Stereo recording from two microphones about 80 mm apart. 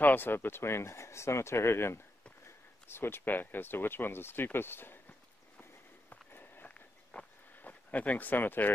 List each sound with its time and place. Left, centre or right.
0.0 s speech: left
5.6 s walk: left